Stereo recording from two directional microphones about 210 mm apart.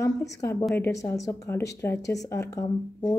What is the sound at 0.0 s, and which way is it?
Speech, 15° left (ahead or behind).